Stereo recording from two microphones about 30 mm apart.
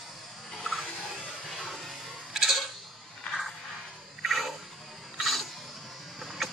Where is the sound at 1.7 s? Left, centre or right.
Centre.